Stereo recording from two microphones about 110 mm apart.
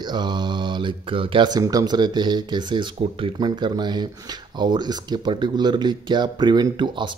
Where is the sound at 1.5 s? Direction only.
35° right (ahead or behind).